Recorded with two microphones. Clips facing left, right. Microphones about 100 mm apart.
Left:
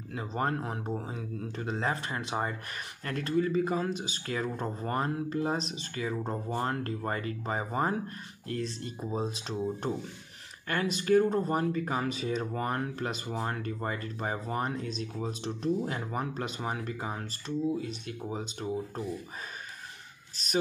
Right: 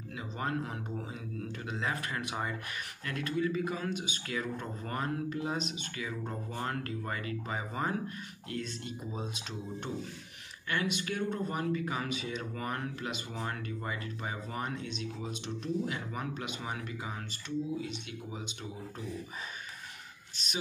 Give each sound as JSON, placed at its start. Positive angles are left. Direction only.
{"t": 0.1, "sound": "speech", "side_deg": 40}
{"t": 20.4, "sound": "speech", "side_deg": 40}